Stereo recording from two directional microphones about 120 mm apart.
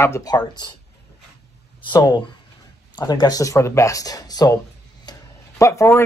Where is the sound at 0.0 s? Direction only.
30° left (ahead or behind).